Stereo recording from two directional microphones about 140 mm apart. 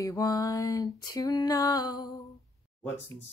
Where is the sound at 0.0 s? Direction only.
25° left (ahead or behind).